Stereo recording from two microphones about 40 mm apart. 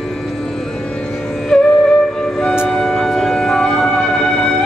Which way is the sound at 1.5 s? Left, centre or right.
Centre.